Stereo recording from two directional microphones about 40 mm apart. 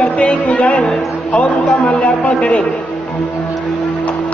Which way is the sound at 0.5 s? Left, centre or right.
Left.